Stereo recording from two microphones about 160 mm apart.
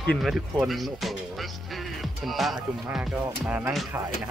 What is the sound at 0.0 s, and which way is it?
Speech, centre (ahead or behind).